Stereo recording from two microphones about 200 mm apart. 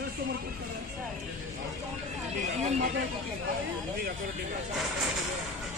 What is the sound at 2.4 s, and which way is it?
Speech, 35° right (ahead or behind).